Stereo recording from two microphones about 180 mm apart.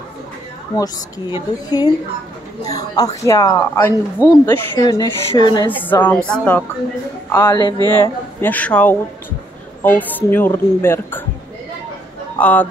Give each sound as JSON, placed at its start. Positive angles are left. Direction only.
{"t": 0.7, "sound": "a woman's voice", "side_deg": 20}
{"t": 5.7, "sound": "speech", "side_deg": 10}
{"t": 7.3, "sound": "a woman's voice", "side_deg": 25}
{"t": 8.0, "sound": "speech", "side_deg": 10}
{"t": 12.4, "sound": "speech", "side_deg": 5}